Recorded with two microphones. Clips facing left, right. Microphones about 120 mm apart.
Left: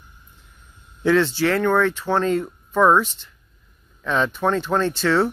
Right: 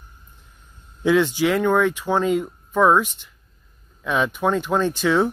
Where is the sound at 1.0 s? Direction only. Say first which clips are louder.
Even; 10° right (ahead or behind).